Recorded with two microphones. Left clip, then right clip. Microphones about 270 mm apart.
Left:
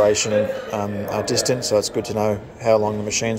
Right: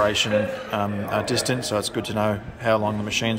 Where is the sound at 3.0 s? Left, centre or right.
Centre.